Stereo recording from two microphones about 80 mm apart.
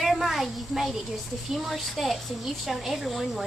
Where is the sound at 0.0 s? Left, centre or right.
Centre.